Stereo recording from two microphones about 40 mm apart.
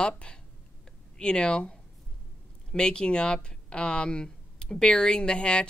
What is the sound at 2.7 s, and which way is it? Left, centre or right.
Speech, left.